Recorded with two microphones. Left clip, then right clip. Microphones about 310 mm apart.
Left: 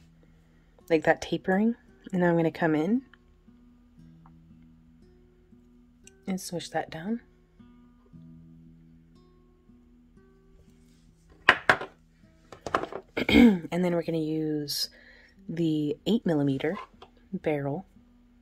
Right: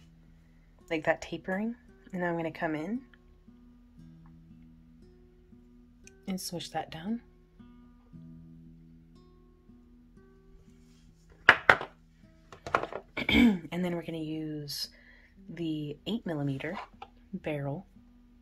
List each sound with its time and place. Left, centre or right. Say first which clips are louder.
0.8 s speech: left 6 dB; left
6.2 s speech: left 3 dB; centre
8.1 s music: even; centre
12.6 s speech: left 1 dB; left